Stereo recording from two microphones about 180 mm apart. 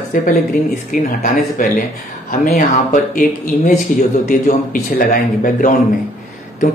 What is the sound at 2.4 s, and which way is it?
Speech, 50° left (ahead or behind).